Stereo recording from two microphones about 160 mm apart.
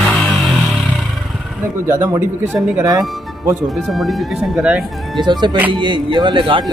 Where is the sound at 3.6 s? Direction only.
Centre (ahead or behind).